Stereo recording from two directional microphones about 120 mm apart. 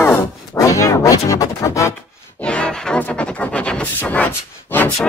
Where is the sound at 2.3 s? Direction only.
10° left (ahead or behind).